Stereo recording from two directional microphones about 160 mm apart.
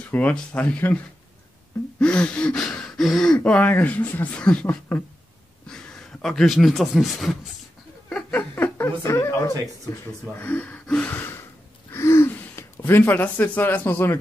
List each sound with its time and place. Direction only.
0.1 s speech: 10° left (ahead or behind)
2.0 s speech: 5° left (ahead or behind)